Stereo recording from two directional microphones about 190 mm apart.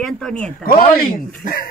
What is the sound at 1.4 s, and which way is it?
Speech, 50° left (ahead or behind).